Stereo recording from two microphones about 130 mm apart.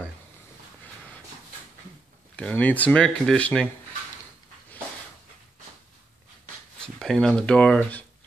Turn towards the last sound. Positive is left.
turn(degrees=10)  # may be behind; listen again after turning